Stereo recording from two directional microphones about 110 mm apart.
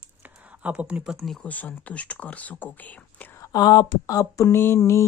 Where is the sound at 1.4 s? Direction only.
15° left (ahead or behind).